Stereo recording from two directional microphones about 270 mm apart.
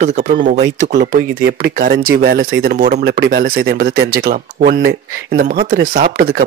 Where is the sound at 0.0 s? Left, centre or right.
Right.